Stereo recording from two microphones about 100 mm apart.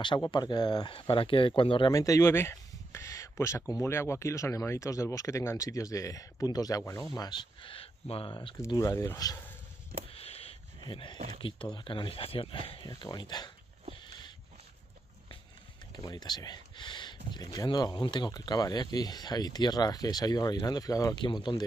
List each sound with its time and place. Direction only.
0.2 s speech: 45° left (ahead or behind); by 1.9 s 60° left (ahead or behind)
1.9 s speech: 35° left (ahead or behind)
7.6 s speech: 70° left (ahead or behind)
8.3 s speech: 50° left (ahead or behind)
8.5 s speech: 30° left (ahead or behind)
10.1 s a sound: 85° left
10.8 s speech: 55° left (ahead or behind)
14.0 s dog: 50° left (ahead or behind)
16.0 s speech: 40° left (ahead or behind)
21.2 s speech: 50° left (ahead or behind)